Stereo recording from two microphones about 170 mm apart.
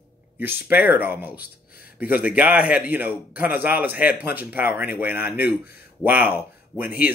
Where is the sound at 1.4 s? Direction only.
60° left (ahead or behind).